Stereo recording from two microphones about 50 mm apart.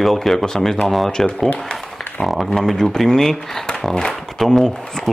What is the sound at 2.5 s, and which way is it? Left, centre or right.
Speech, centre.